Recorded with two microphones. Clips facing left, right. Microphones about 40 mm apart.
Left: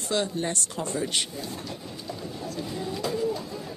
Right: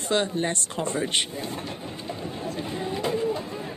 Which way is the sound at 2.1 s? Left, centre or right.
Right.